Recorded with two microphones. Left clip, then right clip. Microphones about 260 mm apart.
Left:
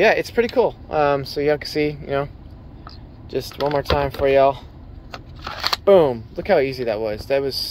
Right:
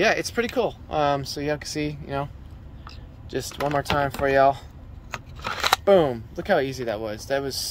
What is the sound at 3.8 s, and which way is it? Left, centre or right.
Speech, centre.